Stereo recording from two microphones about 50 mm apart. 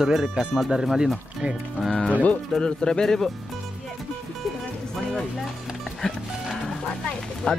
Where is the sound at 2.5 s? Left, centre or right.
Centre.